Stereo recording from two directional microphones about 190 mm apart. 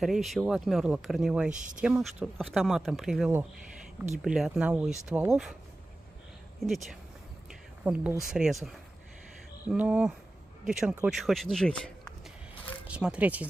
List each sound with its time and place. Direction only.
0.0 s speech: centre (ahead or behind)
1.5 s speech: 40° right (ahead or behind)
1.8 s speech: 5° right (ahead or behind)
6.6 s speech: centre (ahead or behind)